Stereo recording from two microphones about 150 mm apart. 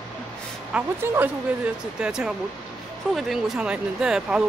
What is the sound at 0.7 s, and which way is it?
Speech, 15° right (ahead or behind).